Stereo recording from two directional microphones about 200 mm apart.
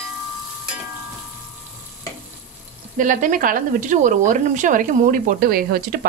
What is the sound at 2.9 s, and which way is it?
Speech, 40° right (ahead or behind).